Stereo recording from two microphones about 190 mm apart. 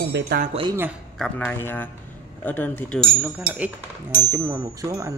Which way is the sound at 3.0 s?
5° right (ahead or behind).